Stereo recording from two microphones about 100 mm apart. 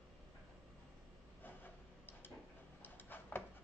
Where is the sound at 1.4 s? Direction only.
20° left (ahead or behind).